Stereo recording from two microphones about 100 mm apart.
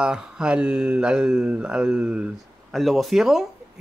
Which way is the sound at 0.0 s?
10° right (ahead or behind).